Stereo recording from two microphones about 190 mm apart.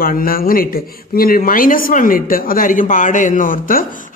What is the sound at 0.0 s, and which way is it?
A woman's voice, 50° left (ahead or behind).